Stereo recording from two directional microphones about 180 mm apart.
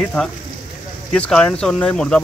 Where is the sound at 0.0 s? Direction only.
5° left (ahead or behind).